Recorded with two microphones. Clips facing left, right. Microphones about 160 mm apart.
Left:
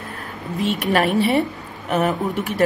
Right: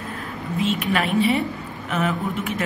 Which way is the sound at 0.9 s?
40° left (ahead or behind).